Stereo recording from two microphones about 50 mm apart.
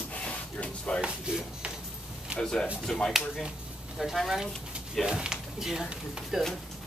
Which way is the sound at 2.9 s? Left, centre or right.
Centre.